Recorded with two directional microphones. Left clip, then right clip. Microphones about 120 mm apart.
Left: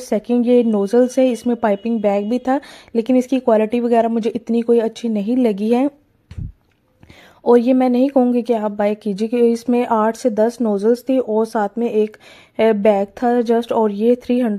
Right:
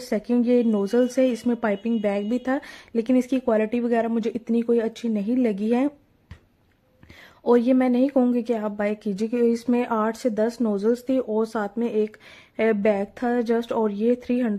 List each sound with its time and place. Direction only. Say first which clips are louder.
0.0 s speech: left 6 dB; 30° left (ahead or behind)
7.4 s speech: left 6 dB; 30° left (ahead or behind)